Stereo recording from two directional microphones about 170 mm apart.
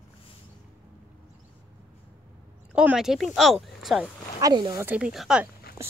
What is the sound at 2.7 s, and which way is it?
Speech, 5° right (ahead or behind).